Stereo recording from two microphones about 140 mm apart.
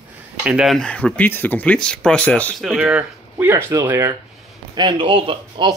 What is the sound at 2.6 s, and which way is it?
Speech, 5° right (ahead or behind).